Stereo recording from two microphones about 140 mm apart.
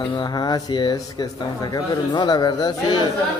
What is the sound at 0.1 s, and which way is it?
A man's voice, 30° left (ahead or behind).